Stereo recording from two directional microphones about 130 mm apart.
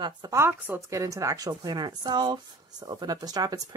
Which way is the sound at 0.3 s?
20° right (ahead or behind).